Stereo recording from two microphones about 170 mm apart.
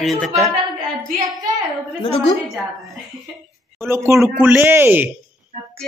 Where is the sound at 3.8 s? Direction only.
15° right (ahead or behind).